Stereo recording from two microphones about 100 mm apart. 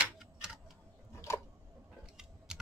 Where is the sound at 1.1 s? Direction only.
30° left (ahead or behind).